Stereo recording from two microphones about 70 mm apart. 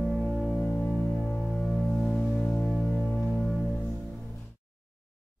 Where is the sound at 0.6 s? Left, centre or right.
Left.